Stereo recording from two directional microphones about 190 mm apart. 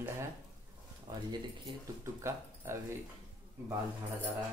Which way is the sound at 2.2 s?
15° right (ahead or behind).